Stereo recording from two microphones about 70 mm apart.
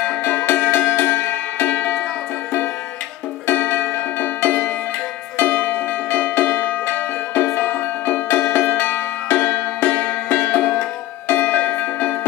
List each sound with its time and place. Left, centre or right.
0.2 s music: left
3.4 s music: left